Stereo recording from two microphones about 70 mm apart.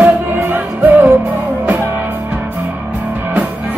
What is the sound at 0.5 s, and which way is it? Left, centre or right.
Music, right.